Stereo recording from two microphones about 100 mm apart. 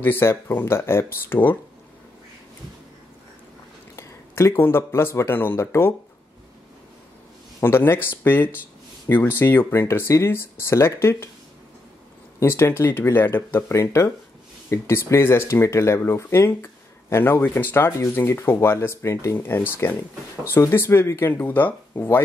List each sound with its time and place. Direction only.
0.0 s speech: 20° left (ahead or behind)
3.9 s speech: 30° left (ahead or behind)
7.6 s speech: 25° left (ahead or behind)
12.4 s speech: 25° left (ahead or behind)